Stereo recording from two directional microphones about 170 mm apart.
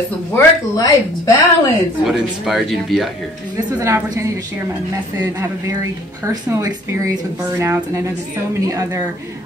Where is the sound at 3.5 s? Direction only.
20° right (ahead or behind).